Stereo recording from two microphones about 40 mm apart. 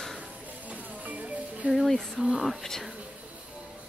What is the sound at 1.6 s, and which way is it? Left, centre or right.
Speech, right.